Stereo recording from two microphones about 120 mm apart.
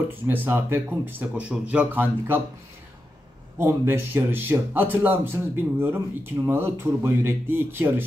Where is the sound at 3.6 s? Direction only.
20° right (ahead or behind).